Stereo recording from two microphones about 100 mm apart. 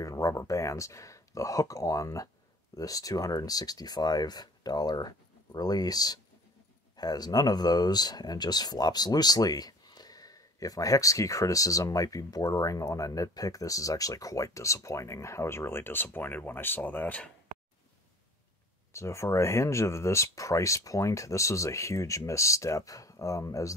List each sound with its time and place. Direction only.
0.0 s speech: 35° left (ahead or behind); by 17.3 s 15° left (ahead or behind)
18.9 s speech: 30° left (ahead or behind)